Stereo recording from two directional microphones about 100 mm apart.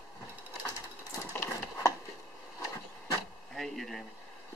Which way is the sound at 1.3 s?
20° left (ahead or behind).